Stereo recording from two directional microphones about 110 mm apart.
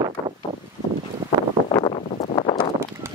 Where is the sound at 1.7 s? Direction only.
45° left (ahead or behind).